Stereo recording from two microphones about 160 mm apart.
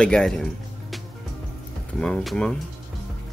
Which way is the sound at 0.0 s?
5° left (ahead or behind).